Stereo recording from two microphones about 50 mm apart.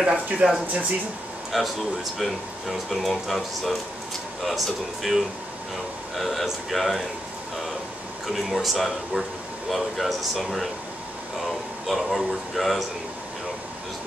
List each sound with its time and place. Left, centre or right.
0.0 s speech: centre
1.5 s speech: centre
8.3 s speech: centre